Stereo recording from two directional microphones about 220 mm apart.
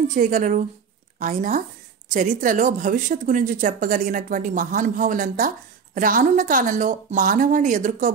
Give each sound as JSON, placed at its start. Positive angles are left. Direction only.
{"t": 0.1, "sound": "speech", "side_deg": -35}